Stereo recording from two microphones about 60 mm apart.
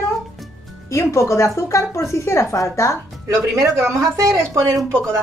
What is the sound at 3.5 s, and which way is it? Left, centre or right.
Speech, right.